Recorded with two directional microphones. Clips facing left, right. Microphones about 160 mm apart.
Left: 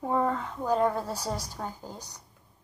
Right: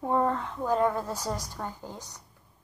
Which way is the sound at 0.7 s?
30° left (ahead or behind).